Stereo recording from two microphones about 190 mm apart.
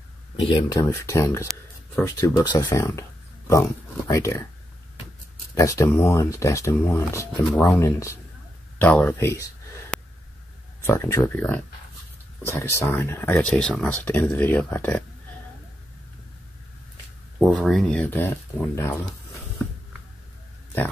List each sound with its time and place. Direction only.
0.5 s speech: 20° left (ahead or behind)
5.5 s speech: 15° left (ahead or behind)
17.4 s speech: centre (ahead or behind)